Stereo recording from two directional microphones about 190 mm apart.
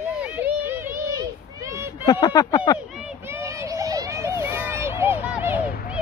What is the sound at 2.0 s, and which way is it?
Speech, 20° left (ahead or behind).